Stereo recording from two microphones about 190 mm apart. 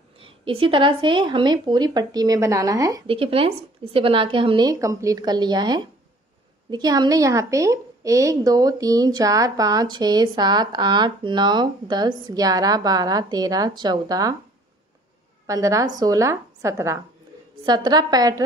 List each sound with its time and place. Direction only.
0.2 s a woman's voice: 30° right (ahead or behind)
15.4 s a woman's voice: 15° right (ahead or behind)